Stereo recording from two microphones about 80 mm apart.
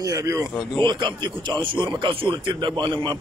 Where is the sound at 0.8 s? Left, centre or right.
Right.